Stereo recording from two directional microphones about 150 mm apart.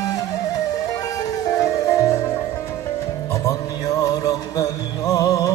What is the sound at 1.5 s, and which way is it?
Music, 20° left (ahead or behind).